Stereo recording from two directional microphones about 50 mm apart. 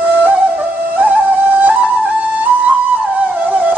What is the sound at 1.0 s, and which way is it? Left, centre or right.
Music, right.